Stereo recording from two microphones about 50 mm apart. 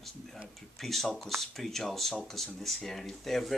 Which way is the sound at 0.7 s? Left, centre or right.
Centre.